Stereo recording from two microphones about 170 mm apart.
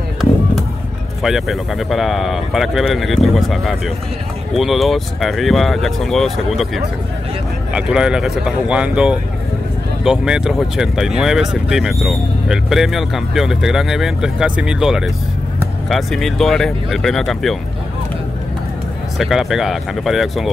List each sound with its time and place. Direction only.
1.2 s speech: centre (ahead or behind)
19.1 s speech: centre (ahead or behind)